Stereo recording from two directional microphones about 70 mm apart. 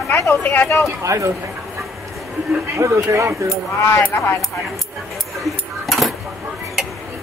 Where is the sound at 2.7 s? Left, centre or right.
Right.